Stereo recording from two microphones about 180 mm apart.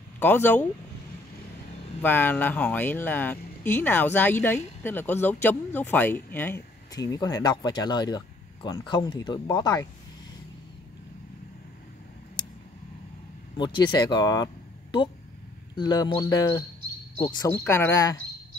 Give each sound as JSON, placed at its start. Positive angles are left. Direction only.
{"t": 0.2, "sound": "speech", "side_deg": 10}
{"t": 2.0, "sound": "speech", "side_deg": 10}
{"t": 6.9, "sound": "speech", "side_deg": 20}
{"t": 13.6, "sound": "speech", "side_deg": 25}